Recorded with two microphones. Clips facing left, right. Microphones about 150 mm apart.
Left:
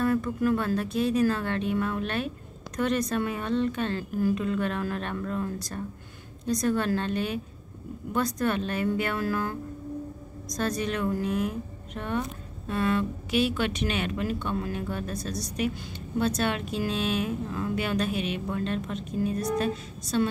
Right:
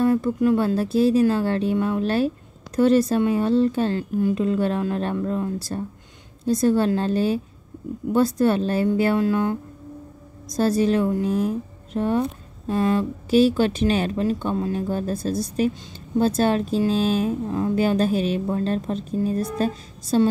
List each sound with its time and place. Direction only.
0.0 s speech: 30° right (ahead or behind)
9.2 s music: 20° right (ahead or behind)
10.5 s speech: 30° right (ahead or behind)